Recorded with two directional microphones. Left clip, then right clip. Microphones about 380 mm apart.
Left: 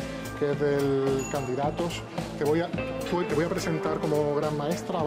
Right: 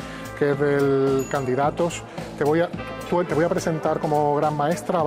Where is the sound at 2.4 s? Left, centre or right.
Right.